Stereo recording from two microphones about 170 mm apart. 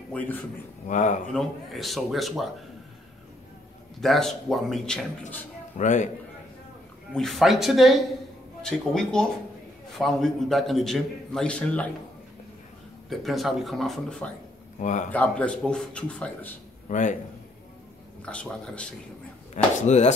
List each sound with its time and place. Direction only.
0.1 s speech: 10° left (ahead or behind)
0.8 s speech: 45° left (ahead or behind)
1.3 s a man's voice: centre (ahead or behind)
4.0 s a man's voice: centre (ahead or behind)
5.8 s speech: 45° left (ahead or behind)
7.1 s a man's voice: centre (ahead or behind)
13.1 s a man's voice: centre (ahead or behind)
14.8 s speech: 45° left (ahead or behind)
15.0 s speech: 10° left (ahead or behind)
16.9 s speech: 45° left (ahead or behind)
18.2 s speech: 5° left (ahead or behind)
19.5 s speech: 45° left (ahead or behind)